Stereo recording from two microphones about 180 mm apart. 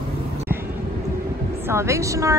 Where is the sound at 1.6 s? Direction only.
15° right (ahead or behind).